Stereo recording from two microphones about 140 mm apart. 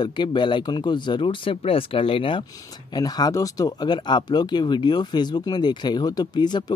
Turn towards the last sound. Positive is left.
turn(degrees=30)  # may be behind; listen again after turning